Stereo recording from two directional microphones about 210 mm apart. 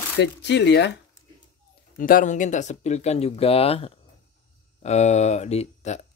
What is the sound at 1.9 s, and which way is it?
Speech, 40° left (ahead or behind).